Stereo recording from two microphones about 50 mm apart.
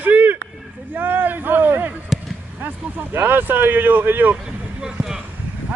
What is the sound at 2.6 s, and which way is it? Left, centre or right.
Vehicle, right.